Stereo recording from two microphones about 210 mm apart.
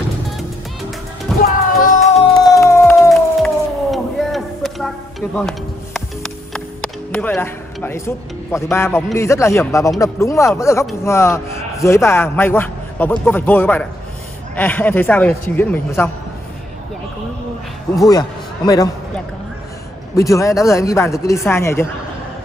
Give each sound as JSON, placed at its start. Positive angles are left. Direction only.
{"t": 1.4, "sound": "music", "side_deg": 40}
{"t": 2.3, "sound": "music", "side_deg": 15}
{"t": 3.0, "sound": "howl", "side_deg": 0}
{"t": 9.9, "sound": "a man's voice", "side_deg": 15}
{"t": 20.2, "sound": "a man's voice", "side_deg": 15}